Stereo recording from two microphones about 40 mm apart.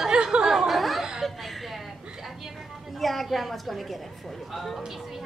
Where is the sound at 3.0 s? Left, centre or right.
Centre.